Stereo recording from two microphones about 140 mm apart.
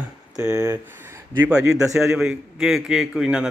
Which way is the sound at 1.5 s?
5° right (ahead or behind).